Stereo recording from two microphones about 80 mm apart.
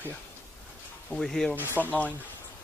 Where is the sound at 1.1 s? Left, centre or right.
Centre.